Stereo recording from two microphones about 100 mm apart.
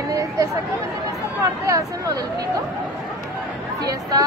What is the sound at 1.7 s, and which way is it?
Speech, 35° right (ahead or behind).